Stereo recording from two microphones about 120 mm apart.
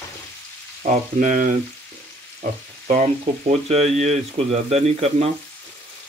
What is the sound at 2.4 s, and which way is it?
Frying, 70° right (ahead or behind).